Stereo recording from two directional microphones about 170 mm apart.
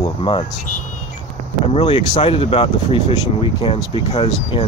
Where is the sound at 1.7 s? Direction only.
35° left (ahead or behind).